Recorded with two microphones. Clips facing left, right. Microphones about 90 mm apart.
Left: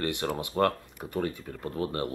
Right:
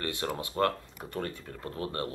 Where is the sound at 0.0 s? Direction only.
15° left (ahead or behind).